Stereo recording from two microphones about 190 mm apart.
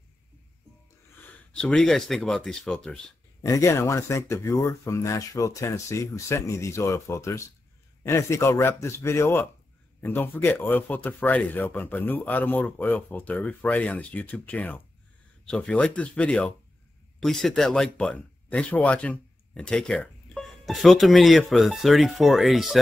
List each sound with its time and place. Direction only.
1.2 s speech: 5° left (ahead or behind)
3.4 s speech: 15° left (ahead or behind); by 22.8 s centre (ahead or behind)